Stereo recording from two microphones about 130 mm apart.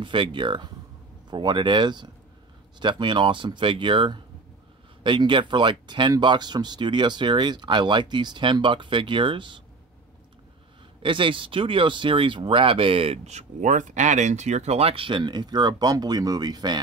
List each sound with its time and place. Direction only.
0.0 s speech: 40° right (ahead or behind)
11.0 s speech: 40° right (ahead or behind)